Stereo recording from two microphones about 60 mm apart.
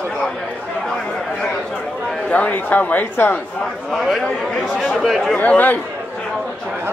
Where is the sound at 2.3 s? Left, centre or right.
Left.